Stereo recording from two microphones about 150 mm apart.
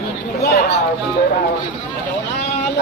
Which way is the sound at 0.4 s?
90° left.